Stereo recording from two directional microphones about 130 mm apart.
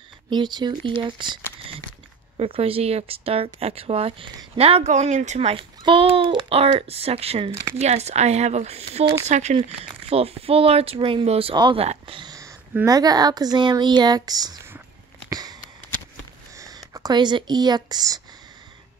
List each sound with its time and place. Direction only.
0.3 s a child's voice: 35° right (ahead or behind); by 9.6 s 60° right (ahead or behind)
9.6 s a child's voice: 50° right (ahead or behind)
11.5 s speech: 35° right (ahead or behind)
11.8 s speech: 50° right (ahead or behind)
12.2 s a sound: 30° right (ahead or behind)
12.8 s speech: 30° right (ahead or behind)
15.2 s sniff: 30° right (ahead or behind)
16.5 s speech: 25° right (ahead or behind)